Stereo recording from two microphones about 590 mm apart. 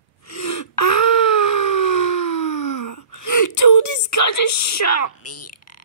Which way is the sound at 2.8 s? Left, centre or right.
Left.